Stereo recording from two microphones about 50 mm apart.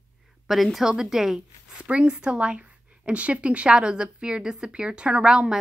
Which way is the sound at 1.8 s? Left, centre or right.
Right.